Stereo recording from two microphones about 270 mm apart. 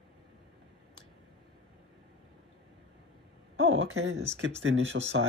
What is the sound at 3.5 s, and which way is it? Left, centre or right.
Speech, right.